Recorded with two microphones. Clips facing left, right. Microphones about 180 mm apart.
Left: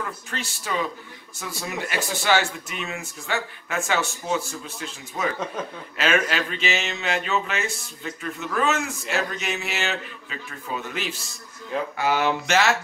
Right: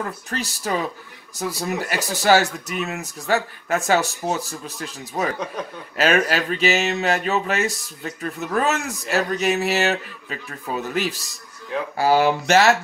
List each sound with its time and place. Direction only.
0.0 s speech: 40° right (ahead or behind)